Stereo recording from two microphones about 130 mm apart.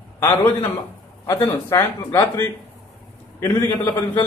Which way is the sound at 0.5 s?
30° left (ahead or behind).